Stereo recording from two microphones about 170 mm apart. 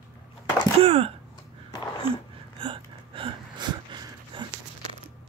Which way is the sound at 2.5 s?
30° right (ahead or behind).